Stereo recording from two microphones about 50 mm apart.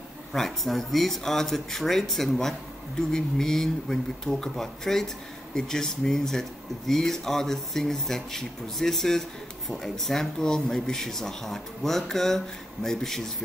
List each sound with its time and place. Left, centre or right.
0.3 s speech: centre